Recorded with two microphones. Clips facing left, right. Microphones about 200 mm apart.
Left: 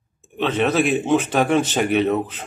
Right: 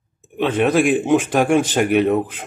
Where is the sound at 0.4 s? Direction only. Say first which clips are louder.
Right 3 dB; 10° right (ahead or behind).